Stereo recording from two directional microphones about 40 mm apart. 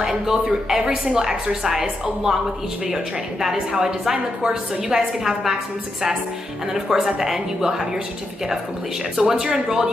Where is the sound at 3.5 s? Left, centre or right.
Centre.